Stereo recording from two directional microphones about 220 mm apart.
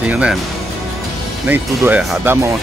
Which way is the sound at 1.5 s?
5° right (ahead or behind).